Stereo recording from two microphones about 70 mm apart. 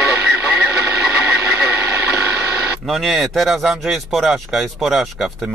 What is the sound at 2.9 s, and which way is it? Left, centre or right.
Speech, centre.